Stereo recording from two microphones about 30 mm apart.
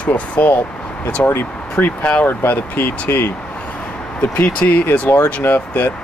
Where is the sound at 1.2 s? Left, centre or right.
Left.